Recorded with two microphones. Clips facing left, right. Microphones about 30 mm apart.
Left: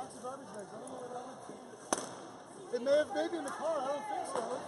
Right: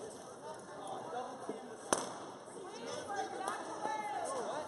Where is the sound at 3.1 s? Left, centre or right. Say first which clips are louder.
Left 5 dB; left.